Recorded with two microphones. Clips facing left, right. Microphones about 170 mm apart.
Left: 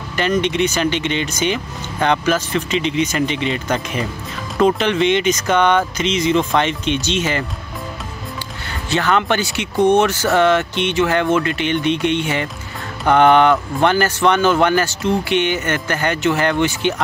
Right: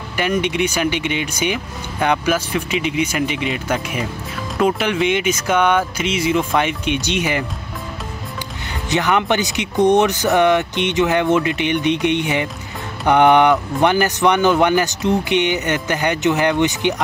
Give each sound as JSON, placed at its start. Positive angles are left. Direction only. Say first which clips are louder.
{"t": 0.1, "sound": "speech", "louder": "left 1 dB", "side_deg": -10}
{"t": 8.8, "sound": "speech", "louder": "even", "side_deg": -15}